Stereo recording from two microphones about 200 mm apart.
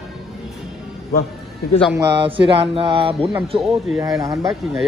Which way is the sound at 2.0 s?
25° right (ahead or behind).